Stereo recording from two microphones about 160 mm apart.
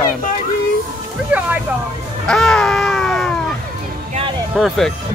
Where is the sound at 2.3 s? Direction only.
5° left (ahead or behind).